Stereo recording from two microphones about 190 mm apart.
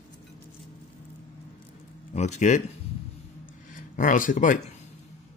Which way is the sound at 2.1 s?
40° left (ahead or behind).